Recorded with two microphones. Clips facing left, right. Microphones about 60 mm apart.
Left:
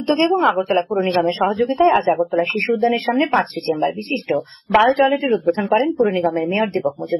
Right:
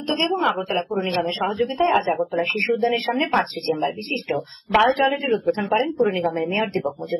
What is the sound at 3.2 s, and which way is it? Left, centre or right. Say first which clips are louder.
Speech: left 4 dB; centre.